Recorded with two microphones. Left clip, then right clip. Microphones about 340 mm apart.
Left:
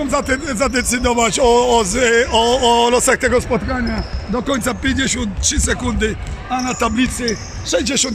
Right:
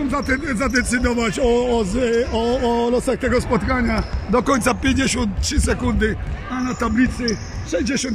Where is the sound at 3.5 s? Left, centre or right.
Centre.